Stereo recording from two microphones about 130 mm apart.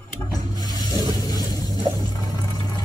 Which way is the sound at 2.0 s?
30° left (ahead or behind).